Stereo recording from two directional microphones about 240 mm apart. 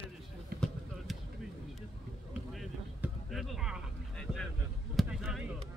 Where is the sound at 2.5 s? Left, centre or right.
Centre.